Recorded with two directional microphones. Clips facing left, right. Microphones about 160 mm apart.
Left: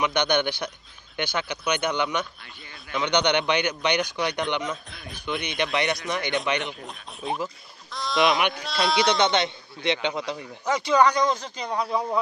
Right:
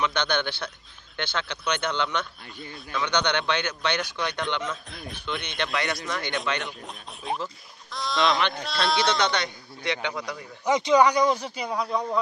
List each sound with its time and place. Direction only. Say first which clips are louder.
0.0 s speech: left 3 dB; 15° left (ahead or behind)
4.9 s speech: right 2 dB; centre (ahead or behind)
5.2 s a man's voice: left 4 dB; 15° left (ahead or behind)
6.9 s speech: left 1 dB; centre (ahead or behind)
7.9 s a sound: left 1 dB; centre (ahead or behind)
8.2 s speech: left 2 dB; 15° left (ahead or behind)
8.6 s speech: left 2 dB; centre (ahead or behind)
9.2 s a man's voice: left 4 dB; 20° left (ahead or behind)
10.6 s a man's voice: right 1 dB; 15° right (ahead or behind); by 12.2 s 5° left (ahead or behind)